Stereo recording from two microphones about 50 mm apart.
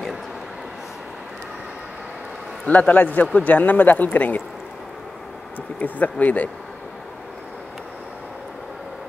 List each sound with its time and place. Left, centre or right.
2.6 s speech: left
5.8 s speech: left